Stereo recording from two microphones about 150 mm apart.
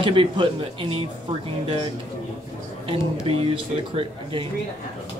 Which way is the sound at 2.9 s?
40° right (ahead or behind).